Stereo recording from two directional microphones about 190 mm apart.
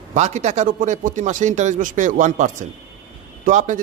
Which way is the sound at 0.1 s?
35° right (ahead or behind).